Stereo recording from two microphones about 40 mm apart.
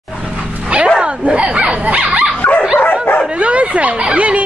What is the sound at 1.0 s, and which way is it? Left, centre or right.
Dog, right.